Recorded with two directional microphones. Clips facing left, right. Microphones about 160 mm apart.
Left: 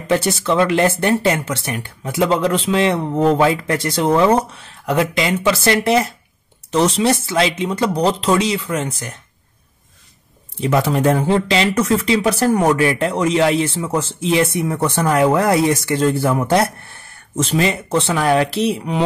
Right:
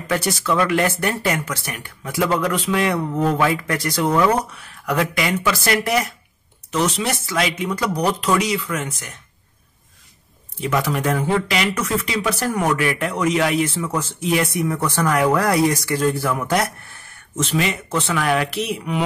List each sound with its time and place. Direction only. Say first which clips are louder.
0.1 s speech: left 4 dB; 25° left (ahead or behind)
10.6 s speech: left 5 dB; 25° left (ahead or behind)